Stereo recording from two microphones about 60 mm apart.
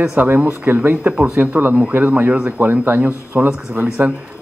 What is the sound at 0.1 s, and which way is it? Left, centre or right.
Speech, right.